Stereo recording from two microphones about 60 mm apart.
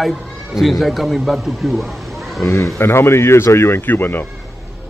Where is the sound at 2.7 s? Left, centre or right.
Left.